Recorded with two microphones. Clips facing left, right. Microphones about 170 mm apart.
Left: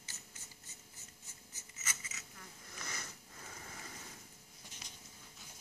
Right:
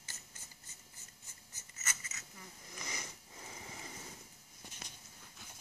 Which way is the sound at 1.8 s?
45° right (ahead or behind).